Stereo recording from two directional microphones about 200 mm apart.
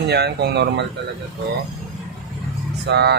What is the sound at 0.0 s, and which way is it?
Speech, 55° right (ahead or behind).